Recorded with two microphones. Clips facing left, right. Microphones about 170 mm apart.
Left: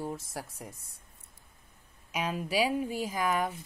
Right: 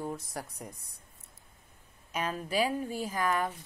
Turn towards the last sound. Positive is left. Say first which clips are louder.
# left 1 dB
turn(degrees=10)  # may be behind; listen again after turning